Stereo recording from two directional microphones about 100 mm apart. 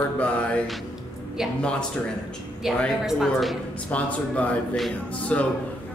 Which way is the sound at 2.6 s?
Centre (ahead or behind).